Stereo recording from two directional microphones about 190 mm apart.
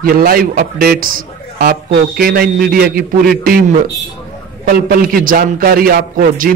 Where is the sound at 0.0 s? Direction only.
50° right (ahead or behind).